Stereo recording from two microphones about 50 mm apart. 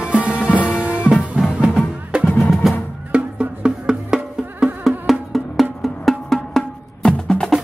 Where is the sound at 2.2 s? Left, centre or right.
Centre.